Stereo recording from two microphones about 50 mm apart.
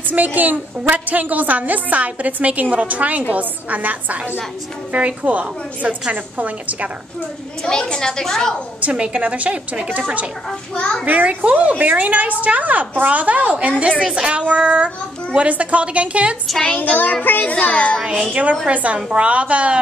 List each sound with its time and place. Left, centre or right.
0.1 s a woman's voice: right
7.6 s a woman's voice: centre
8.9 s a woman's voice: centre
10.7 s a child's voice: centre
11.1 s a woman's voice: right
16.7 s a child's voice: left
18.3 s a woman's voice: right